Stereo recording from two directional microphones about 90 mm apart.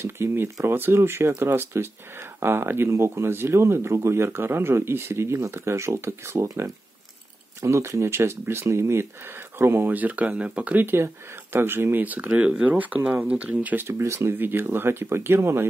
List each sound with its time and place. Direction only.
0.0 s speech: 25° right (ahead or behind)
13.8 s speech: 30° right (ahead or behind)